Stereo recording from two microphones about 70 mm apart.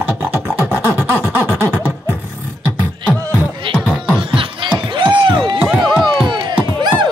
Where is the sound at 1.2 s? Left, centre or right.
Right.